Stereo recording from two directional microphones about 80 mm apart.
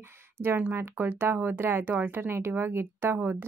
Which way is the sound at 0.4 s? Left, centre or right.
Right.